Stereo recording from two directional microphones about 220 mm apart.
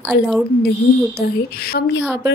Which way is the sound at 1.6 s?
45° left (ahead or behind).